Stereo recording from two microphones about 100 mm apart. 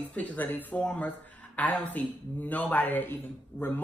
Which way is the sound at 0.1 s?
15° left (ahead or behind).